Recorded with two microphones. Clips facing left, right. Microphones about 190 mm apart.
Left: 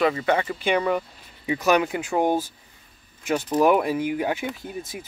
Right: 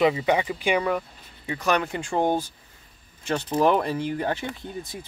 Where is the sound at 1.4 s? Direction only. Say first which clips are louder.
Left 4 dB; 10° left (ahead or behind).